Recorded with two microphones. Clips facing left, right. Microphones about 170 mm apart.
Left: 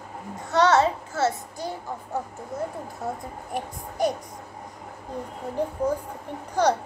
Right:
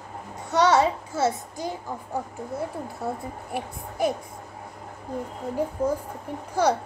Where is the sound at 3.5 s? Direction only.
10° right (ahead or behind).